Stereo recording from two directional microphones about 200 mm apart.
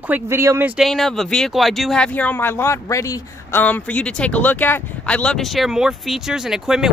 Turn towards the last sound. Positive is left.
turn(degrees=-5)  # may be behind; listen again after turning